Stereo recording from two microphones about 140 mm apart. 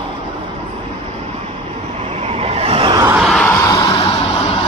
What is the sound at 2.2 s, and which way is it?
Vehicle, 50° right (ahead or behind).